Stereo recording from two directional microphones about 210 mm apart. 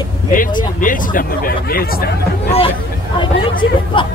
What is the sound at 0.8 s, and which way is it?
Speech, 40° left (ahead or behind).